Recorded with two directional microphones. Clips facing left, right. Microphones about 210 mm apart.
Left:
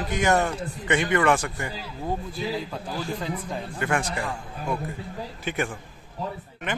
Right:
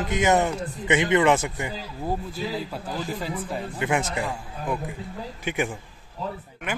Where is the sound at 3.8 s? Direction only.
20° right (ahead or behind).